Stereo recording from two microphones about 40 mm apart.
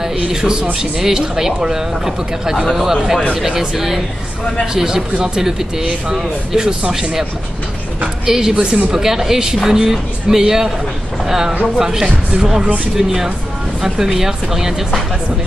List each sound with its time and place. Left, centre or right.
0.0 s a man's voice: centre
8.3 s speech: centre